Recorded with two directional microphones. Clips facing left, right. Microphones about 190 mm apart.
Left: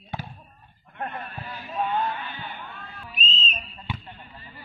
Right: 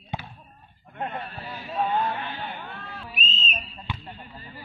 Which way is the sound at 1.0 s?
30° right (ahead or behind).